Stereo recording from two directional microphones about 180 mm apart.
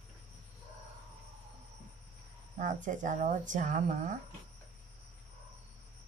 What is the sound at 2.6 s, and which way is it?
Speech, 45° right (ahead or behind).